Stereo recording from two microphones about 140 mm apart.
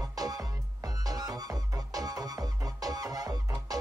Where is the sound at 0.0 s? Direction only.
25° right (ahead or behind).